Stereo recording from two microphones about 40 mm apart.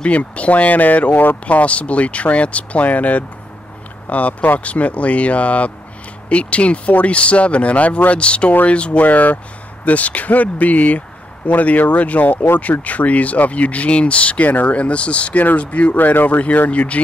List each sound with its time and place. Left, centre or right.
0.0 s speech: left
1.4 s speech: left
9.0 s speech: left
16.0 s speech: left